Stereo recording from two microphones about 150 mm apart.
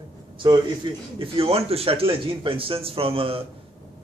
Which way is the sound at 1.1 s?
40° right (ahead or behind).